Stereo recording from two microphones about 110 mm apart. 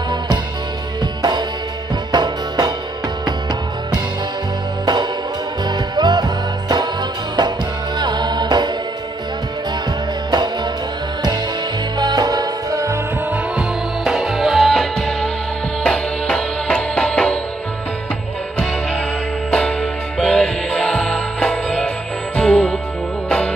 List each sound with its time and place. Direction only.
2.1 s music: 40° right (ahead or behind)
5.7 s music: 40° right (ahead or behind)
10.3 s music: 40° right (ahead or behind)
12.0 s music: 40° right (ahead or behind)
13.3 s music: 5° right (ahead or behind)
19.5 s music: 5° left (ahead or behind)